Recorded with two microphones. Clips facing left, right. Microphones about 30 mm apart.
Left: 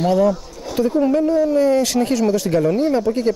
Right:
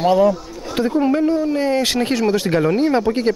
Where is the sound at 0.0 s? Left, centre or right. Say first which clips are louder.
Right 2 dB; right.